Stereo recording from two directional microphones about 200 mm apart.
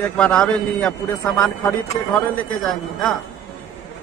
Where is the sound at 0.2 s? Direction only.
5° left (ahead or behind).